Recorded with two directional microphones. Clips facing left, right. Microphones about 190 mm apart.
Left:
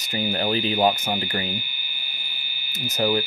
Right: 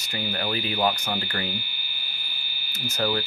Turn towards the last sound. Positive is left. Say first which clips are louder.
# left 4 dB
turn(degrees=15)  # may be behind; listen again after turning